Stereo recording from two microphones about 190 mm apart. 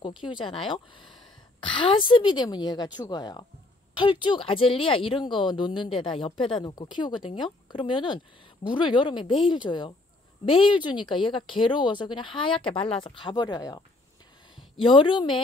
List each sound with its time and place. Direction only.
0.2 s speech: 25° left (ahead or behind)